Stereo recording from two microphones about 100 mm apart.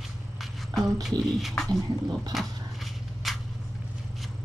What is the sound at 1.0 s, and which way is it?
Beatboxing, centre (ahead or behind).